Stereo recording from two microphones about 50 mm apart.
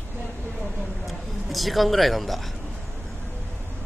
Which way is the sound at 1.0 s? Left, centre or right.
Centre.